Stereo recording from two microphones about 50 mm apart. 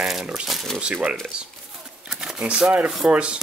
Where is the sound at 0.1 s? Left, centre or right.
Centre.